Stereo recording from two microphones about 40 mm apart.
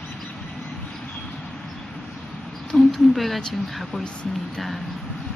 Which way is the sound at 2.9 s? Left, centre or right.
Centre.